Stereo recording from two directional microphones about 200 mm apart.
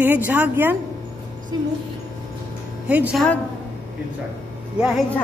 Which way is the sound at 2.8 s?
5° right (ahead or behind).